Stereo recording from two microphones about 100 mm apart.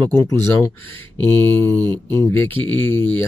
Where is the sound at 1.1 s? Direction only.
20° left (ahead or behind).